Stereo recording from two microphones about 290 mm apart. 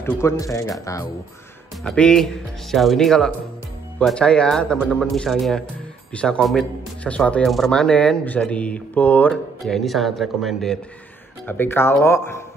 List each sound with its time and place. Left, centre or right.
0.0 s a man's voice: centre